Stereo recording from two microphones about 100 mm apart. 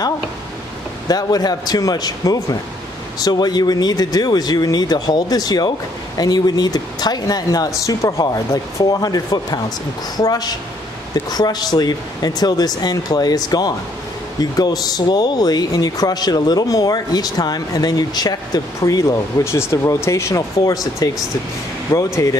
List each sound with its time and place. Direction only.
1.0 s speech: 40° left (ahead or behind)